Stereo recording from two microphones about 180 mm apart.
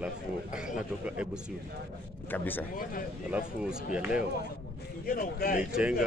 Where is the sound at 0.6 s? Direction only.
5° right (ahead or behind).